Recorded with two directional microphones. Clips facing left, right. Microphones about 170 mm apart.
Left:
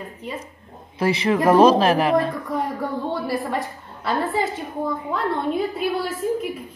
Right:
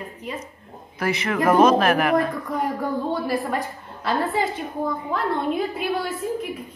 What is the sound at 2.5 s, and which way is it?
A woman's voice, centre (ahead or behind).